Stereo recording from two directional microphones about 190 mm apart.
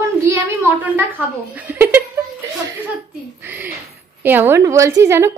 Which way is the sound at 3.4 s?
10° right (ahead or behind).